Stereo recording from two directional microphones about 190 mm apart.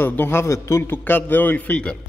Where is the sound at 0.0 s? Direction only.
10° left (ahead or behind).